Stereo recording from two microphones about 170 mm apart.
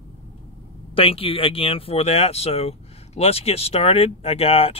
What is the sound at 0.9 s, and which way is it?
A man's voice, 35° left (ahead or behind).